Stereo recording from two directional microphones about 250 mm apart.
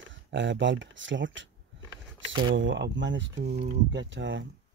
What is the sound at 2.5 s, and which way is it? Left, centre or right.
Speech, right.